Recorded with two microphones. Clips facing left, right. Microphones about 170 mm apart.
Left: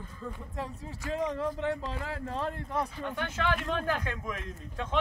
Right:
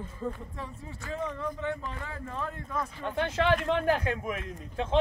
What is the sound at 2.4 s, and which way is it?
Speech, 30° left (ahead or behind).